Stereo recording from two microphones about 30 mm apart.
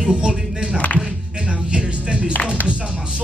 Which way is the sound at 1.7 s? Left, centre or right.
Right.